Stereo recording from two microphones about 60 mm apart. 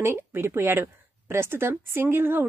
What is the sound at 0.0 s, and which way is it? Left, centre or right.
Speech, right.